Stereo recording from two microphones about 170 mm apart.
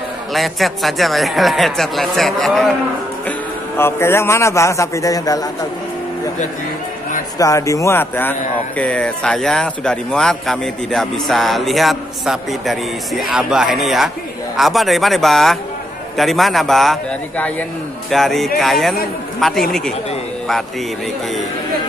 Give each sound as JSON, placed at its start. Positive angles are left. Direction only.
{"t": 0.3, "sound": "speech", "side_deg": 0}
{"t": 3.3, "sound": "a man's voice", "side_deg": 15}
{"t": 7.3, "sound": "speech", "side_deg": 20}